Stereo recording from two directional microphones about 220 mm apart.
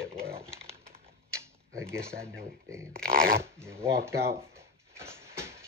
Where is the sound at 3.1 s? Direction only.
40° right (ahead or behind).